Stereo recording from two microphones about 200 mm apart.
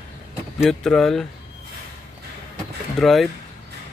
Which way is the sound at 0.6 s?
Centre (ahead or behind).